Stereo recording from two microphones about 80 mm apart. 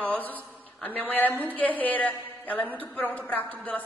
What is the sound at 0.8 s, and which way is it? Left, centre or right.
A woman's voice, left.